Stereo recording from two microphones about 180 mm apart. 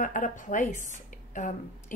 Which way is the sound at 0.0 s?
45° left (ahead or behind).